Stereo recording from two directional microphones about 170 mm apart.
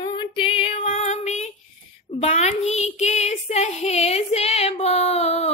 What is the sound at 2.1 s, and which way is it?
Child singing, 40° left (ahead or behind).